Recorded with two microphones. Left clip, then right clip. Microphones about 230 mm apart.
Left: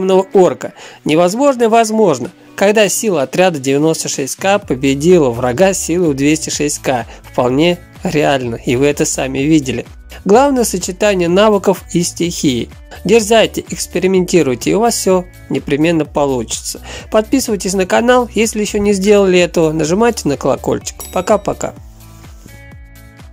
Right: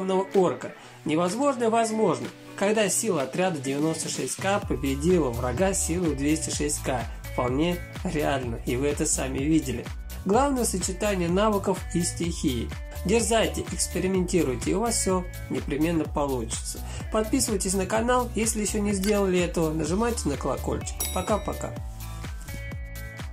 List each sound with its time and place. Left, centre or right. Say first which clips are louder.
0.0 s speech: left 13 dB; left